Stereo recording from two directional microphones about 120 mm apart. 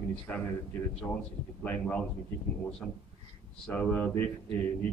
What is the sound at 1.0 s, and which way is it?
Speech, 30° left (ahead or behind).